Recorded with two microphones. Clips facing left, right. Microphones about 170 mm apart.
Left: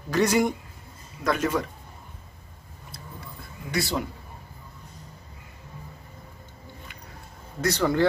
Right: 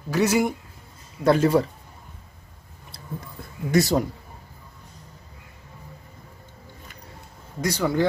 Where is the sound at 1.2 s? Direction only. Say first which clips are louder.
Right 7 dB; 30° right (ahead or behind).